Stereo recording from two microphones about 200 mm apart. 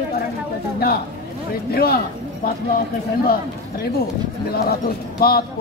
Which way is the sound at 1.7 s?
50° left (ahead or behind).